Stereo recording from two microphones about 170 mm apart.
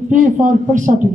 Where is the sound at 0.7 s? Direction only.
50° right (ahead or behind).